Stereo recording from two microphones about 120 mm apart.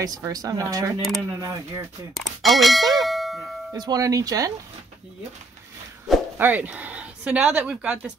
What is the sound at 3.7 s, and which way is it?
Speech, 30° right (ahead or behind).